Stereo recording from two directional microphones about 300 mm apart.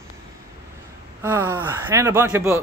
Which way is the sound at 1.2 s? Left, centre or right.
Centre.